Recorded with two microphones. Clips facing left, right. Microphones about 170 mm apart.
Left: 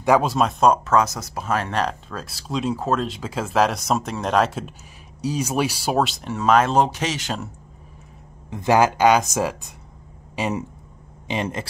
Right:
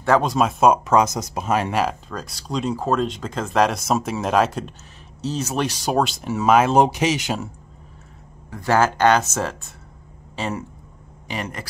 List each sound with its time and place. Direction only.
0.0 s speech: 10° left (ahead or behind)
0.3 s speech: centre (ahead or behind)
8.5 s speech: 20° left (ahead or behind)